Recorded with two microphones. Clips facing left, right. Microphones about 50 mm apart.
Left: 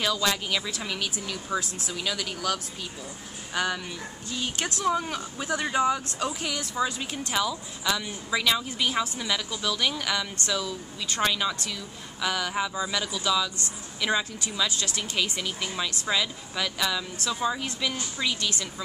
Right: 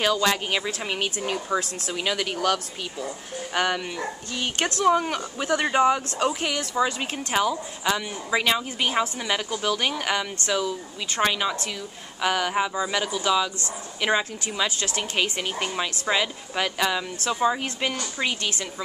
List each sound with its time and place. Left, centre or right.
0.0 s a woman's voice: right
11.2 s speech: right
12.2 s a woman's voice: right